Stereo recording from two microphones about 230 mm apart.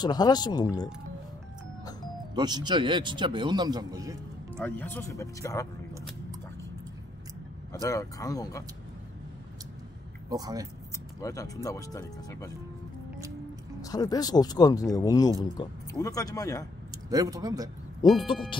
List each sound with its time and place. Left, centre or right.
0.0 s speech: centre
2.3 s speech: centre
4.6 s speech: centre
7.8 s speech: centre
10.3 s speech: centre
11.1 s speech: centre
13.7 s speech: centre
17.1 s speech: centre
18.0 s speech: centre